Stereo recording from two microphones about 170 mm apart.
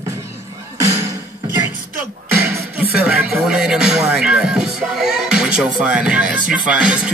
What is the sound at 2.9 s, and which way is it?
Music, 5° right (ahead or behind).